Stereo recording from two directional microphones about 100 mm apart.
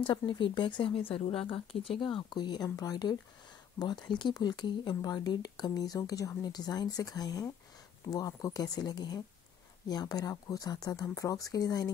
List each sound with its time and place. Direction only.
0.0 s speech: 55° left (ahead or behind); by 11.9 s 40° left (ahead or behind)